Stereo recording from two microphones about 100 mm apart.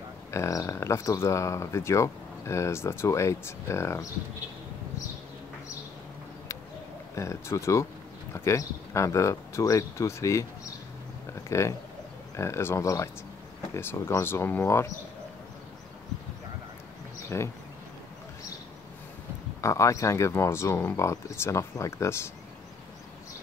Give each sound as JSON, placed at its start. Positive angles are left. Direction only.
{"t": 0.3, "sound": "speech", "side_deg": 30}
{"t": 7.2, "sound": "speech", "side_deg": 30}
{"t": 11.3, "sound": "a sound", "side_deg": 30}
{"t": 12.4, "sound": "speech", "side_deg": 30}
{"t": 17.3, "sound": "speech", "side_deg": 25}
{"t": 19.6, "sound": "speech", "side_deg": 30}